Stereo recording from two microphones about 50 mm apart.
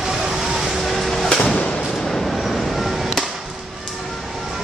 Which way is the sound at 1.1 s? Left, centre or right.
Centre.